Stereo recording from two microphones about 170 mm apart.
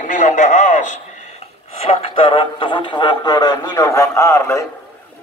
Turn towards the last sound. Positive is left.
turn(degrees=20)  # may be behind; listen again after turning